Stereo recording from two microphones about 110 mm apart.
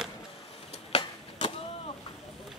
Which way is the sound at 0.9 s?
65° left (ahead or behind).